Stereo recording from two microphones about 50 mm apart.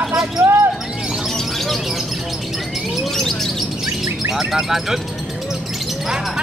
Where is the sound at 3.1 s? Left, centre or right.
Centre.